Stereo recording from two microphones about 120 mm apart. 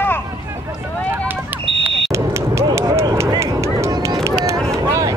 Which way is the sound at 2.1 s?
25° right (ahead or behind).